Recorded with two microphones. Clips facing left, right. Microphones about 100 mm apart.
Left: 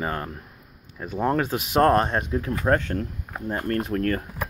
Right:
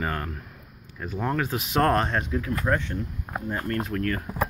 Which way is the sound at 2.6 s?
50° left (ahead or behind).